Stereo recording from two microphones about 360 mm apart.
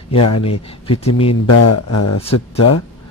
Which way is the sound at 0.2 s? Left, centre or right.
Left.